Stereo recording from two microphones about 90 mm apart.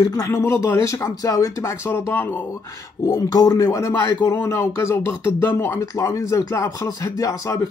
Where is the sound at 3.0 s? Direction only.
40° left (ahead or behind); by 5.8 s 25° left (ahead or behind).